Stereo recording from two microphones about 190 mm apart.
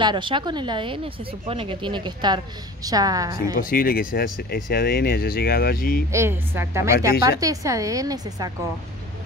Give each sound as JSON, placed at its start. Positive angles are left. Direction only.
{"t": 0.0, "sound": "speech", "side_deg": -25}
{"t": 3.5, "sound": "speech", "side_deg": 50}
{"t": 6.1, "sound": "a woman's voice", "side_deg": -15}